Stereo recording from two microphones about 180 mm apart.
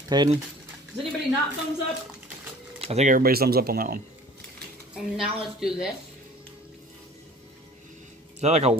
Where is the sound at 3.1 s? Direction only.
55° right (ahead or behind).